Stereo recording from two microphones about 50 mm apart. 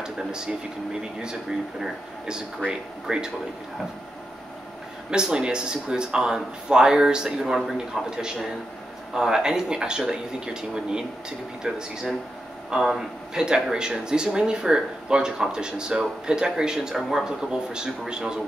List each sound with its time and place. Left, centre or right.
0.0 s speech: centre
1.8 s speech: centre
5.1 s speech: centre